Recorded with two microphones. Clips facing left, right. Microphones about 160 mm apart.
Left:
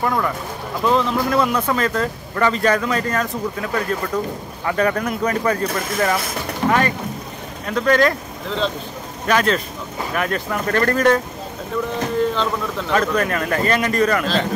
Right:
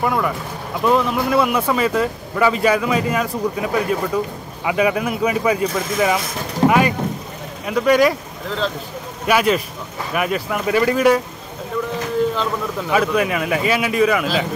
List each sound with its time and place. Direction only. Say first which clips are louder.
0.0 s speech: right 1 dB; 5° right (ahead or behind)
6.6 s speech: right 4 dB; 35° right (ahead or behind)
7.6 s speech: right 2 dB; 10° right (ahead or behind)
12.4 s speech: even; 10° right (ahead or behind)